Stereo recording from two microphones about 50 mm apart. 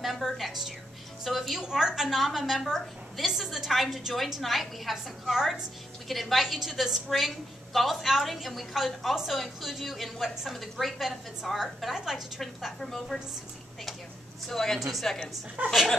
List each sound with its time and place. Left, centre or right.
0.0 s a sound: centre
1.2 s a woman's voice: centre
1.6 s a woman's voice: centre
12.4 s a woman's voice: centre
14.5 s a woman's voice: centre
15.6 s speech: right